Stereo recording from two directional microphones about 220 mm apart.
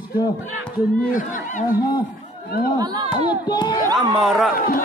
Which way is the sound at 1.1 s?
40° left (ahead or behind).